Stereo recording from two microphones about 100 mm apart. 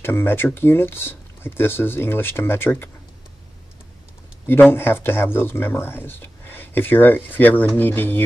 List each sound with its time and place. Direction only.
0.0 s speech: 20° left (ahead or behind)
4.7 s speech: 20° left (ahead or behind)